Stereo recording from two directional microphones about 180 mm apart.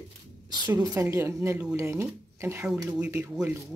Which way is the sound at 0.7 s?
15° right (ahead or behind).